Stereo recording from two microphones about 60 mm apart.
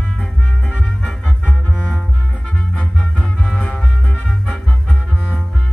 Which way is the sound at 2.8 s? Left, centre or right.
Centre.